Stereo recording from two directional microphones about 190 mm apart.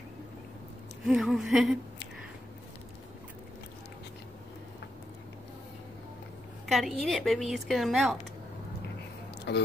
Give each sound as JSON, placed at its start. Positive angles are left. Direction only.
{"t": 1.0, "sound": "a woman's voice", "side_deg": 0}
{"t": 6.6, "sound": "a woman's voice", "side_deg": 0}
{"t": 9.5, "sound": "speech", "side_deg": 60}